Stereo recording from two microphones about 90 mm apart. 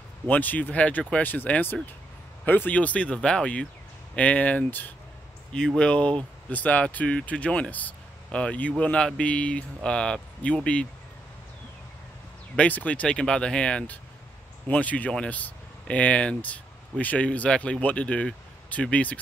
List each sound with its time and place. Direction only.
0.3 s speech: 20° left (ahead or behind)
12.5 s speech: 15° left (ahead or behind)